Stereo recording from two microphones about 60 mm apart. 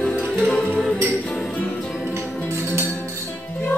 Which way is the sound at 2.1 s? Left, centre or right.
Right.